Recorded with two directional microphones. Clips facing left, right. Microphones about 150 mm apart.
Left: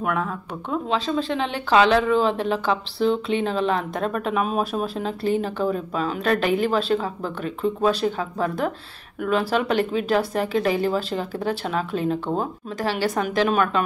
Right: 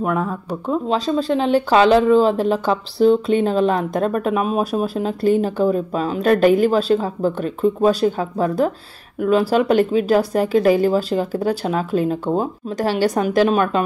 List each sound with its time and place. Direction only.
0.8 s speech: 40° right (ahead or behind)